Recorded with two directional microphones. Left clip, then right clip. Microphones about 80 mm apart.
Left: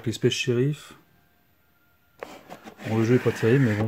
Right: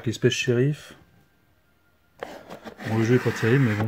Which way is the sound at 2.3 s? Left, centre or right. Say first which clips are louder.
Right 3 dB; left.